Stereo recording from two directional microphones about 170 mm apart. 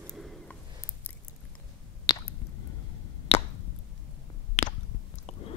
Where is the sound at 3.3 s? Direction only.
35° left (ahead or behind).